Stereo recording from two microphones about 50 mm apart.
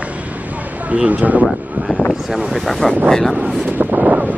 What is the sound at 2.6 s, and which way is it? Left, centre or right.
Speech, centre.